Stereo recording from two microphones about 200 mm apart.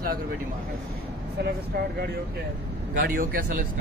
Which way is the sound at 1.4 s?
50° right (ahead or behind).